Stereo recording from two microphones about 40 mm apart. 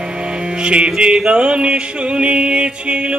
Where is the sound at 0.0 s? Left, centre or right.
Right.